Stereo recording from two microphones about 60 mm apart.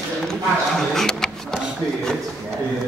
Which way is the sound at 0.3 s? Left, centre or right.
Centre.